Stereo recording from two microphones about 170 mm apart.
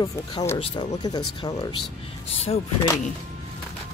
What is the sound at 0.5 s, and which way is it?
Speech, 35° left (ahead or behind).